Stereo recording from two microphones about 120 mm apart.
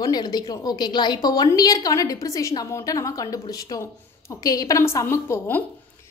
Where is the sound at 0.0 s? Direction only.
35° left (ahead or behind).